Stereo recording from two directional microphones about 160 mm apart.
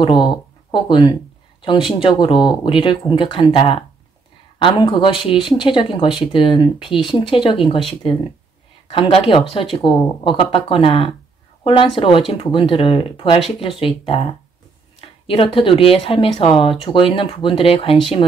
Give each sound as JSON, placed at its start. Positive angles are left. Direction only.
{"t": 0.0, "sound": "speech", "side_deg": 30}